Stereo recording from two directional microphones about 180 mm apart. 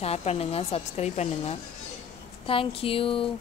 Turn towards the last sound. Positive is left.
turn(degrees=30)  # may be behind; listen again after turning